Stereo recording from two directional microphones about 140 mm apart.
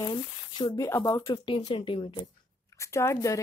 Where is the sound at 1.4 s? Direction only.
35° left (ahead or behind).